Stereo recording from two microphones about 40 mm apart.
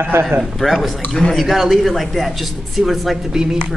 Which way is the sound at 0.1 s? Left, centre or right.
Right.